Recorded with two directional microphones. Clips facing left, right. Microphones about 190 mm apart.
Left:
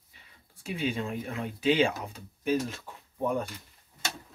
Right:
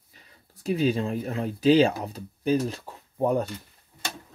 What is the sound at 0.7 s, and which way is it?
Speech, 40° right (ahead or behind).